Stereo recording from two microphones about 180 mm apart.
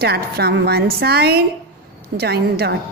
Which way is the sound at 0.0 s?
65° right (ahead or behind).